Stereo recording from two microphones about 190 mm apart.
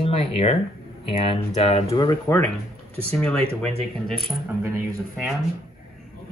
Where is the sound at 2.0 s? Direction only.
15° left (ahead or behind).